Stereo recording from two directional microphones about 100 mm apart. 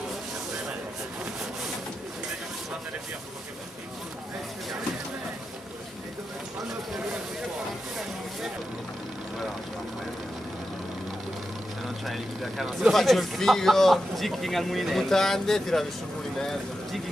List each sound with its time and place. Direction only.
12.1 s speech: centre (ahead or behind)
16.3 s vehicle: 5° left (ahead or behind)